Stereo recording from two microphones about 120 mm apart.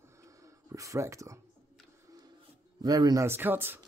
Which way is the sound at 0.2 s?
25° right (ahead or behind).